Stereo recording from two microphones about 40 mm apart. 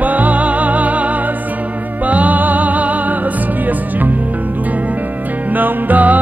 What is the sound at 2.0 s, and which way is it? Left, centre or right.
Music, right.